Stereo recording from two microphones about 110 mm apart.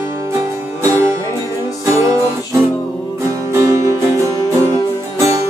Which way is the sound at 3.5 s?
30° right (ahead or behind).